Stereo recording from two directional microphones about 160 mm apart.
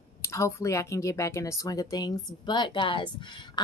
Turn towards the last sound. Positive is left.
turn(degrees=30)  # may be behind; listen again after turning